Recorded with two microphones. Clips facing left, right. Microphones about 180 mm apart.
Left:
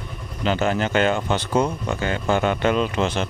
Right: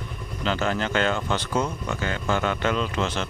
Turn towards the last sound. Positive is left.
turn(degrees=15)  # may be behind; listen again after turning